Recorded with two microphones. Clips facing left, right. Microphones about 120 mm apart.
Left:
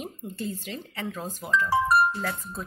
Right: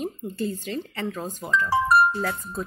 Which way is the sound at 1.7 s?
90° right.